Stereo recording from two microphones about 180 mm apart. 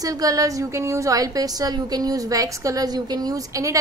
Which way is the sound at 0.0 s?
20° right (ahead or behind).